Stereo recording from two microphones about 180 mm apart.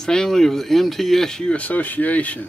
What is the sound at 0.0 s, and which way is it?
Speech, 5° left (ahead or behind).